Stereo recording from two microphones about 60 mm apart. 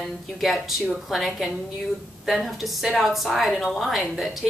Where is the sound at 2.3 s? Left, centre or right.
Centre.